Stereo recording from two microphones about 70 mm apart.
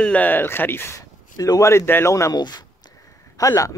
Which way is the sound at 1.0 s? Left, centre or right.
Left.